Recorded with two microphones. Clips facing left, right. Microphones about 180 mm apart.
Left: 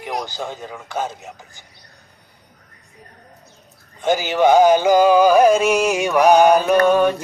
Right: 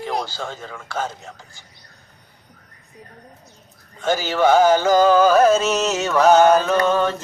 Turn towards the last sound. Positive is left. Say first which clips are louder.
# left 4 dB
turn(degrees=15)  # may be behind; listen again after turning